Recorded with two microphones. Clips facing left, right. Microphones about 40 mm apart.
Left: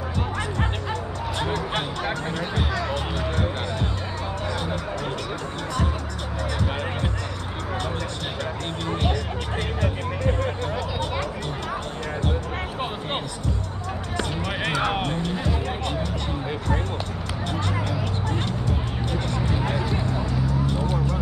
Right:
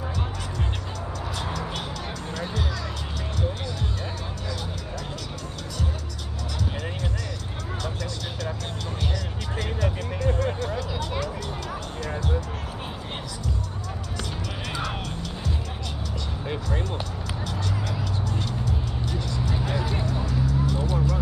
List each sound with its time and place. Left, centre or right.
1.4 s music: left
9.8 s music: left
14.1 s music: left
17.5 s music: left
19.5 s a sound: left
20.2 s vehicle: left